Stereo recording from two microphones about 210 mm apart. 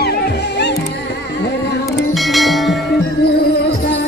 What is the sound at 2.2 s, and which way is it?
Music, centre (ahead or behind).